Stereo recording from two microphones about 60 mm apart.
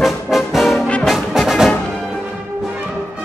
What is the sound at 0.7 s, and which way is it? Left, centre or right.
Brass instrument, centre.